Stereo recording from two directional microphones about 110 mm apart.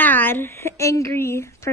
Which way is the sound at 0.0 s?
15° left (ahead or behind).